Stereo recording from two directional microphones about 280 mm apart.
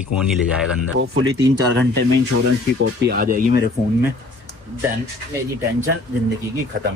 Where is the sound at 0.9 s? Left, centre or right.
Right.